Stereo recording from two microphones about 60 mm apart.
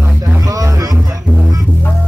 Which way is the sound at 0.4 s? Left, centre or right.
Right.